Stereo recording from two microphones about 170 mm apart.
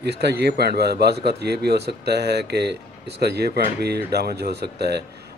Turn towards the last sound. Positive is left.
turn(degrees=-75)  # may be behind; listen again after turning